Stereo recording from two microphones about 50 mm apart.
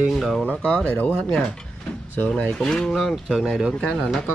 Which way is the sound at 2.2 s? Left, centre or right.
Left.